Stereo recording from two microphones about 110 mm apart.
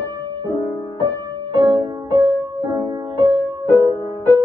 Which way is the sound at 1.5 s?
45° right (ahead or behind).